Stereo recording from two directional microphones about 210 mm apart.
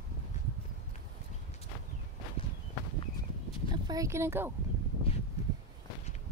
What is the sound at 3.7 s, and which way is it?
Speech, 15° right (ahead or behind).